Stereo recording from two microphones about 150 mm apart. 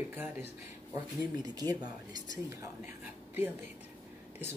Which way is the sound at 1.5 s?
25° right (ahead or behind).